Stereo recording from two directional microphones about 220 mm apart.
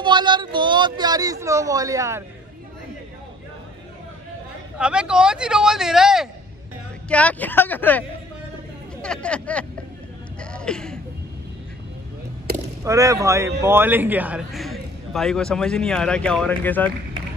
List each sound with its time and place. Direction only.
0.0 s speech: 20° right (ahead or behind)
4.7 s a man's voice: 5° right (ahead or behind)
9.0 s a man's voice: 5° left (ahead or behind)
10.4 s a sound: 5° left (ahead or behind)
12.8 s a man's voice: 15° right (ahead or behind); by 16.9 s 10° left (ahead or behind)